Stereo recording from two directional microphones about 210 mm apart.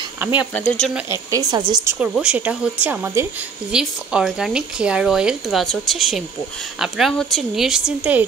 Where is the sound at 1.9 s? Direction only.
5° right (ahead or behind).